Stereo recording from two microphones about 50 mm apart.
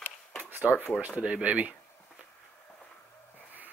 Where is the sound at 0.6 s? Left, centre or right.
Right.